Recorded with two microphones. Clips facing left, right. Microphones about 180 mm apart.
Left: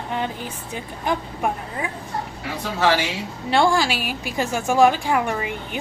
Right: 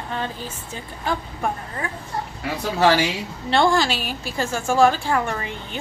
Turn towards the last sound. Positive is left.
turn(degrees=10)  # may be behind; listen again after turning